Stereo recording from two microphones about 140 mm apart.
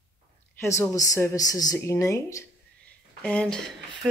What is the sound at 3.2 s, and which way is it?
Speech, 5° left (ahead or behind).